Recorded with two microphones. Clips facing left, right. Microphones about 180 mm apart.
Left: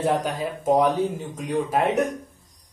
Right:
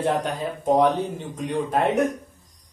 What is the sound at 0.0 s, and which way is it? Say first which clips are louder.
Speech: even; 5° left (ahead or behind).